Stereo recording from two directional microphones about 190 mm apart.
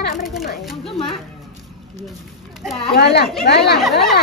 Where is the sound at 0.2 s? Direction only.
Centre (ahead or behind).